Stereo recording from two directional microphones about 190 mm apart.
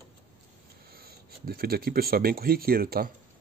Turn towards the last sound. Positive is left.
turn(degrees=-50)  # may be behind; listen again after turning